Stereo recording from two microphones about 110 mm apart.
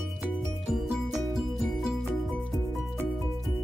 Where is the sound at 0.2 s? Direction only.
Centre (ahead or behind).